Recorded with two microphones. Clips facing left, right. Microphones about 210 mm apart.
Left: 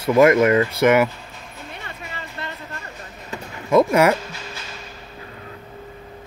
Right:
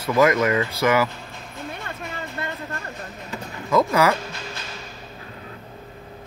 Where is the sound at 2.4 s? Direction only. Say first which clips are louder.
Right 2 dB; 50° right (ahead or behind).